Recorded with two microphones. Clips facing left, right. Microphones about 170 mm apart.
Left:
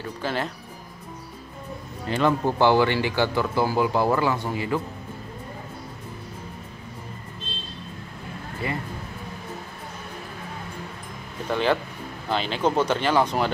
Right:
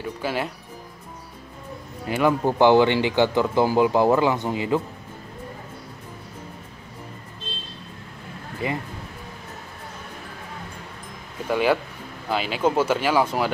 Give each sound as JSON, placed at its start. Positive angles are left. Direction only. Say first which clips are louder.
{"t": 0.0, "sound": "speech", "louder": "right 1 dB", "side_deg": -10}
{"t": 2.0, "sound": "speech", "louder": "right 1 dB", "side_deg": -10}
{"t": 8.6, "sound": "speech", "louder": "right 3 dB", "side_deg": -15}
{"t": 11.4, "sound": "speech", "louder": "right 2 dB", "side_deg": -10}